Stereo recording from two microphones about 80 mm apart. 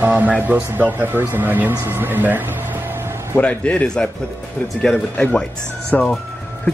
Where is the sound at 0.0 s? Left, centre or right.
Centre.